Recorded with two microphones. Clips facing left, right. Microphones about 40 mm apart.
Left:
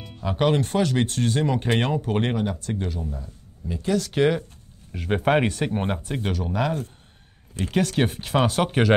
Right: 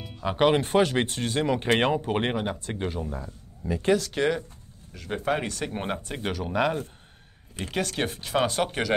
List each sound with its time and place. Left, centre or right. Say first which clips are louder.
0.2 s speech: even; centre
4.0 s speech: left 4 dB; centre
4.9 s speech: left 6 dB; left
5.7 s speech: left 4 dB; centre
7.5 s speech: left 6 dB; centre